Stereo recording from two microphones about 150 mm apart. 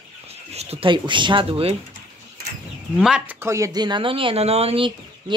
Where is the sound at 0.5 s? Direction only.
45° right (ahead or behind).